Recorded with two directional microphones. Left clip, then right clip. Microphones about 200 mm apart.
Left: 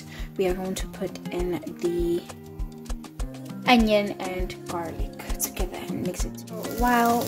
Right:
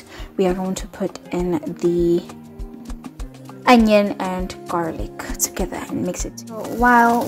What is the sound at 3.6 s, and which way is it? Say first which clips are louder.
A woman's voice: right 7 dB; 20° right (ahead or behind).